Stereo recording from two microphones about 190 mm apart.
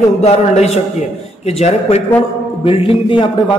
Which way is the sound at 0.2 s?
35° left (ahead or behind).